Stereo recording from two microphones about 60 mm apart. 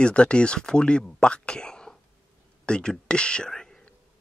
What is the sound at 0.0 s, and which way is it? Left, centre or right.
Speech, centre.